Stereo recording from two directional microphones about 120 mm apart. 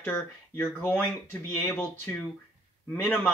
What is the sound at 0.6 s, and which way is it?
Speech, 15° left (ahead or behind).